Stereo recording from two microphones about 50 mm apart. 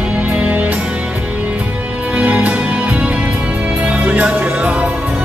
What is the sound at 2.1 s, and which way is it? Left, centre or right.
Music, right.